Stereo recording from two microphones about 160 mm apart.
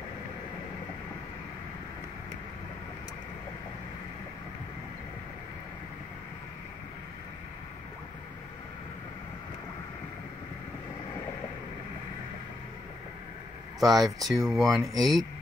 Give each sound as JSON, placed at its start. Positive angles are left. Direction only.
{"t": 13.7, "sound": "speech", "side_deg": 0}
{"t": 14.8, "sound": "speech", "side_deg": -25}